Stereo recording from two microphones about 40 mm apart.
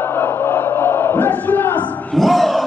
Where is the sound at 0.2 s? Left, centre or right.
Left.